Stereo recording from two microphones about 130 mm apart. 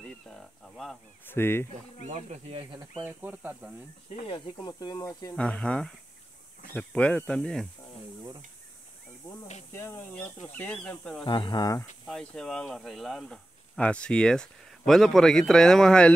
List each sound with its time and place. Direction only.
0.0 s speech: 5° left (ahead or behind)
1.2 s speech: 15° left (ahead or behind)
2.0 s speech: 60° right (ahead or behind)
2.7 s speech: 40° right (ahead or behind)
3.0 s speech: 15° right (ahead or behind)
4.3 s speech: 35° left (ahead or behind)
5.3 s speech: 10° left (ahead or behind)
9.8 s speech: 15° left (ahead or behind)
11.2 s speech: 35° left (ahead or behind)
12.1 s speech: 5° left (ahead or behind)